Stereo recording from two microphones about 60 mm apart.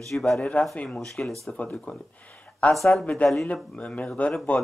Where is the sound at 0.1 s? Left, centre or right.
Centre.